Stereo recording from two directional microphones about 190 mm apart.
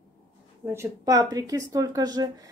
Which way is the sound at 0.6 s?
15° right (ahead or behind).